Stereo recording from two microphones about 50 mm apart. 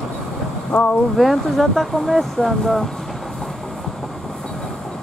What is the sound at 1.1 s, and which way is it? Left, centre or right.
Speech, centre.